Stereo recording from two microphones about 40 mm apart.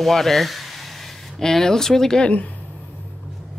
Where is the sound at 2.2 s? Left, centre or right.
Left.